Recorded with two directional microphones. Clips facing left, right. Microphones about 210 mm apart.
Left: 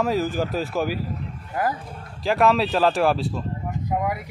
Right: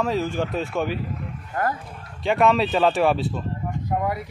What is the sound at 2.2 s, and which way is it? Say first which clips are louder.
Speech: even; centre (ahead or behind).